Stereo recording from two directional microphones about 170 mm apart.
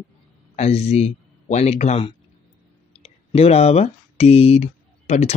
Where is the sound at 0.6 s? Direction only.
40° left (ahead or behind).